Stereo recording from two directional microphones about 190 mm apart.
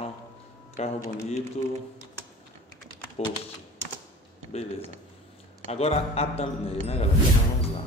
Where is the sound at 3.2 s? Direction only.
35° left (ahead or behind).